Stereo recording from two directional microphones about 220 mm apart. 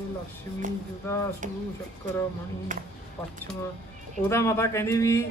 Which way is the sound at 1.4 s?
35° right (ahead or behind).